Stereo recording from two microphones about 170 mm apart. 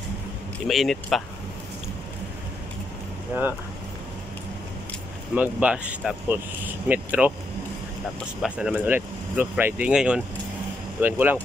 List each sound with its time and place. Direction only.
0.7 s speech: centre (ahead or behind)
3.3 s speech: 15° right (ahead or behind)
5.3 s speech: 10° right (ahead or behind)
8.4 s speech: 5° right (ahead or behind)